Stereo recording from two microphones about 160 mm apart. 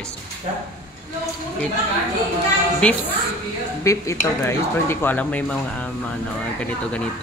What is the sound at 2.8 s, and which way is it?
Speech, 5° left (ahead or behind).